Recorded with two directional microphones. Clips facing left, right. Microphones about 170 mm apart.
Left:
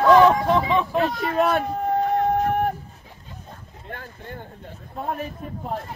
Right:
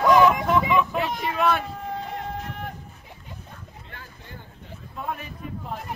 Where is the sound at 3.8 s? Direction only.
55° left (ahead or behind).